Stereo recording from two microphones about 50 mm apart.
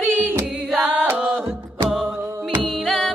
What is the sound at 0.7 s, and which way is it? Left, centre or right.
Music, right.